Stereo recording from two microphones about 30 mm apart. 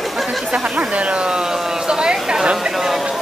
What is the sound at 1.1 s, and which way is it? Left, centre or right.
Speech, right.